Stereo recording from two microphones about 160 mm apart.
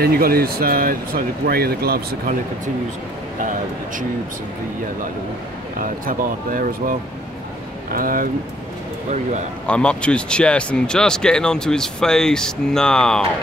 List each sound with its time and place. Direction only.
0.0 s speech: 70° right (ahead or behind)
5.8 s speech: 60° right (ahead or behind)
9.7 s speech: 5° left (ahead or behind)